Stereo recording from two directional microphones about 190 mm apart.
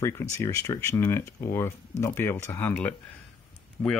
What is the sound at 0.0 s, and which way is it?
Speech, 15° left (ahead or behind).